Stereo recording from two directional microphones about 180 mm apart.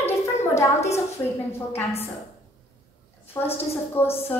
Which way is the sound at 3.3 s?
10° left (ahead or behind).